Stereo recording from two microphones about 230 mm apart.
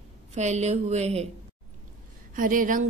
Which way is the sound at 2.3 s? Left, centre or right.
Right.